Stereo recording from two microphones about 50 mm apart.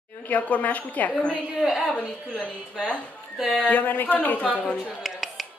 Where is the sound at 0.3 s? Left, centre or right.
Left.